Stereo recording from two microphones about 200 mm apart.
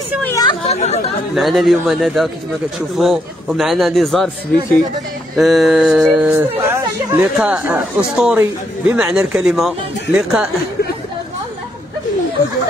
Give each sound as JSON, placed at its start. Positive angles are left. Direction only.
{"t": 0.2, "sound": "speech", "side_deg": 15}
{"t": 0.7, "sound": "speech", "side_deg": 35}
{"t": 1.3, "sound": "a man's voice", "side_deg": 0}
{"t": 5.4, "sound": "a man's voice", "side_deg": 0}